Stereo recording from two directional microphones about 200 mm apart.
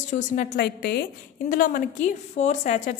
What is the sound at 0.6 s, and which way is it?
Speech, 55° left (ahead or behind).